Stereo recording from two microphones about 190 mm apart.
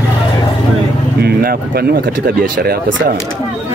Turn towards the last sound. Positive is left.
turn(degrees=-50)  # may be behind; listen again after turning